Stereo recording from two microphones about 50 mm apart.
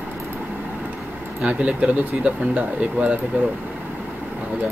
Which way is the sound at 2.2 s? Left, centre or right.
Right.